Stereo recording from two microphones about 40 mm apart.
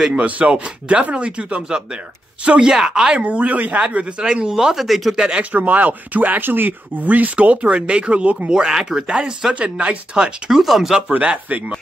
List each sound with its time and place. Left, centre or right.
0.1 s speech: right
2.7 s speech: centre
3.3 s speech: right
4.7 s speech: centre
5.1 s speech: centre
5.4 s speech: right
8.5 s speech: centre
9.0 s speech: right
10.5 s speech: centre
11.1 s speech: right